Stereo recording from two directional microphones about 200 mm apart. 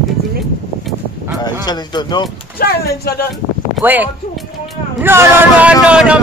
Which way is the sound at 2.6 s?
50° left (ahead or behind).